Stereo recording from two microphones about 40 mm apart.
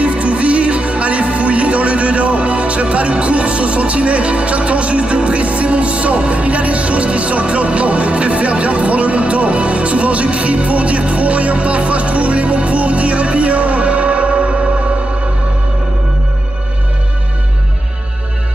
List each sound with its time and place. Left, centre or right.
0.0 s music: right